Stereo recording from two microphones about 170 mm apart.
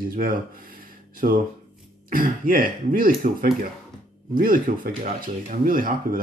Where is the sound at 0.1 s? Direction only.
55° right (ahead or behind).